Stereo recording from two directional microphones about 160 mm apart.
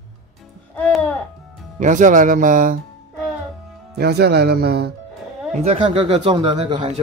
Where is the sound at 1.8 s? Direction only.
50° right (ahead or behind).